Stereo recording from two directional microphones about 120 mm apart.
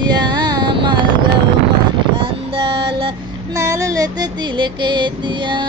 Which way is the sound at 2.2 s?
45° right (ahead or behind).